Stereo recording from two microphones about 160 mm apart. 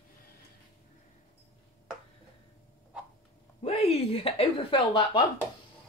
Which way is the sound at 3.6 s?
40° left (ahead or behind).